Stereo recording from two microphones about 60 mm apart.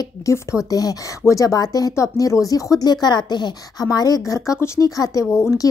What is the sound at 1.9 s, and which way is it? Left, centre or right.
Speech, left.